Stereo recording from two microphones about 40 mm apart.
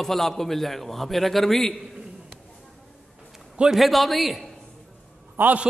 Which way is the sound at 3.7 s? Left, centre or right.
Centre.